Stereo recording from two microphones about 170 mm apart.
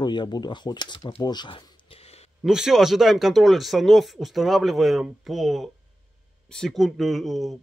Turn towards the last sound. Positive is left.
turn(degrees=0)  # may be behind; listen again after turning